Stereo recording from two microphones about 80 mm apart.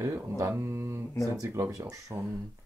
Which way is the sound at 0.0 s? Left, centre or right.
Right.